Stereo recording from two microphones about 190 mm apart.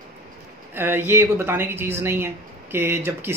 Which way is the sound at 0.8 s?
10° right (ahead or behind).